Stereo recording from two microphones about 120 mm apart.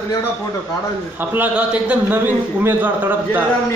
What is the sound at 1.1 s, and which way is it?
A man's voice, 15° right (ahead or behind).